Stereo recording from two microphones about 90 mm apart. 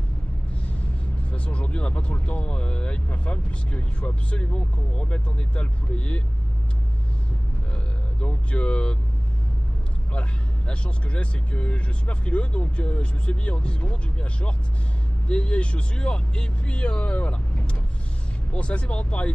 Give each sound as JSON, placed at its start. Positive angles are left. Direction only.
{"t": 1.3, "sound": "speech", "side_deg": 15}
{"t": 7.7, "sound": "a sound", "side_deg": 15}
{"t": 10.7, "sound": "speech", "side_deg": 10}